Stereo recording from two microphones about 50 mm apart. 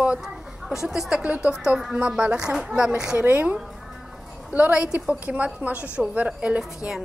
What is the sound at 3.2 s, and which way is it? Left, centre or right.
A woman's voice, right.